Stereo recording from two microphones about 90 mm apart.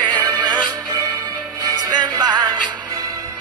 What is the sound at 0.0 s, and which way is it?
Music, 55° right (ahead or behind).